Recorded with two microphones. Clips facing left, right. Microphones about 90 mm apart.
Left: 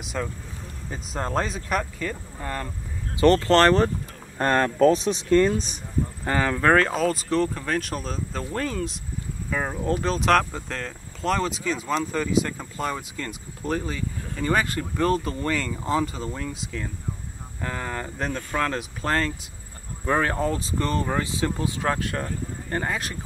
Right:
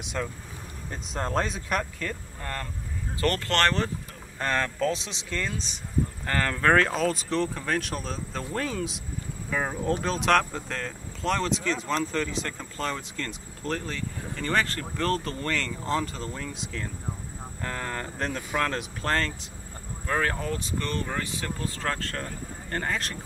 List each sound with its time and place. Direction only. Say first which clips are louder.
0.0 s speech: left 2 dB; centre (ahead or behind)
3.3 s speech: left 7 dB; 35° left (ahead or behind)
6.2 s speech: left 4 dB; 10° left (ahead or behind)
20.1 s speech: left 4 dB; 15° left (ahead or behind)
20.3 s speech: left 5 dB; 30° left (ahead or behind)
21.5 s speech: left 5 dB; 10° left (ahead or behind)